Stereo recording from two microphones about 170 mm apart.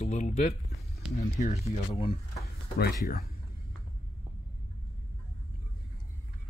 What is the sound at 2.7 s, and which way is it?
Speech, 65° left (ahead or behind).